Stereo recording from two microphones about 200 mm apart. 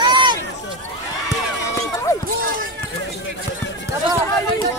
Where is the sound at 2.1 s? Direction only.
15° left (ahead or behind).